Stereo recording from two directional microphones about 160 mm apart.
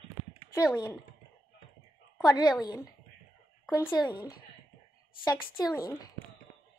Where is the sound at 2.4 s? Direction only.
25° left (ahead or behind).